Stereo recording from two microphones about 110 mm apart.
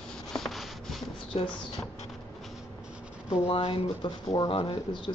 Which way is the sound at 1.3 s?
60° left (ahead or behind).